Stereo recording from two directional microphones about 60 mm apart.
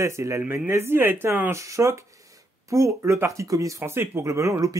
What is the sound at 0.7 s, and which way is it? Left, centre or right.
Speech, right.